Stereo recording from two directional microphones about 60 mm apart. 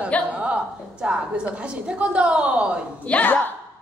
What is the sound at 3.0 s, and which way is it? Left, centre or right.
Speech, left.